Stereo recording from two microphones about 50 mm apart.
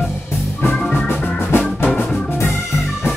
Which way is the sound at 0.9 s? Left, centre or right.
Left.